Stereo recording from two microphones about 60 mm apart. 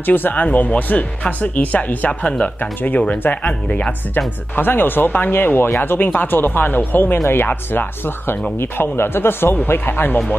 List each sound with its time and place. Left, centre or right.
0.0 s speech: left
4.6 s speech: left